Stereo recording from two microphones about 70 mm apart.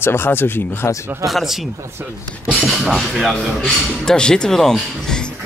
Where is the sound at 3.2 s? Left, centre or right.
Centre.